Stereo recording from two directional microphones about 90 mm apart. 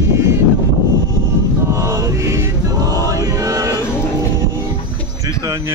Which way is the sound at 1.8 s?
30° right (ahead or behind).